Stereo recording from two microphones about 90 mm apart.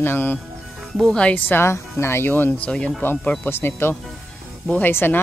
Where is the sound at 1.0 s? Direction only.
10° left (ahead or behind).